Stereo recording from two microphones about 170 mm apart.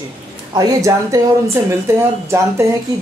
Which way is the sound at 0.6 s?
20° right (ahead or behind).